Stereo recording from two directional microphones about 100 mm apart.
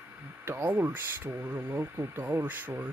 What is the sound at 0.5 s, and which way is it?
Speech, 20° right (ahead or behind).